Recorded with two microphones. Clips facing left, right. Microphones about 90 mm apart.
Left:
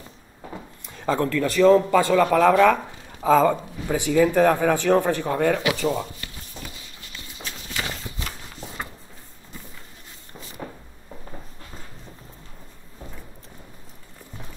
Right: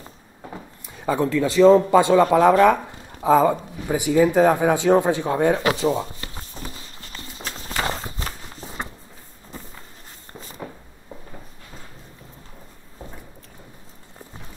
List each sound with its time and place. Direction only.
0.6 s a man's voice: 5° right (ahead or behind); by 2.2 s 20° right (ahead or behind)
2.6 s speech: 10° right (ahead or behind)
5.8 s walk: 25° right (ahead or behind)